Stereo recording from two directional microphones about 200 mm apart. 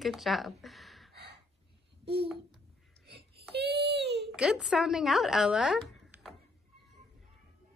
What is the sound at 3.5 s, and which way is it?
Baby cry, 55° right (ahead or behind).